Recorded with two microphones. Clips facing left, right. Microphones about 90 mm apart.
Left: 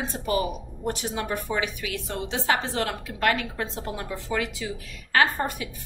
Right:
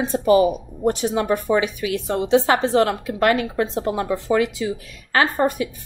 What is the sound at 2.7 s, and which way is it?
Speech, 30° right (ahead or behind).